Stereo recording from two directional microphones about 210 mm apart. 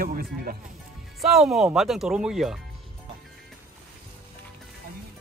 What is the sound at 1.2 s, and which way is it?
Speech, centre (ahead or behind).